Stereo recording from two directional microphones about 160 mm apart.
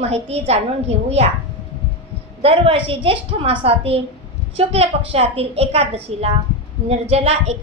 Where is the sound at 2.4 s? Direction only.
35° right (ahead or behind).